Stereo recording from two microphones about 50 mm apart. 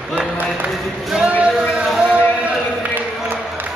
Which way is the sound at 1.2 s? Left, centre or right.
Right.